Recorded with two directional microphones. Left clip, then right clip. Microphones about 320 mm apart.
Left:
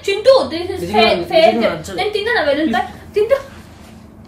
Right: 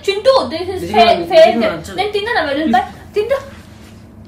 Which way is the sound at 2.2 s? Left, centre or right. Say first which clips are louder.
Left 1 dB; centre.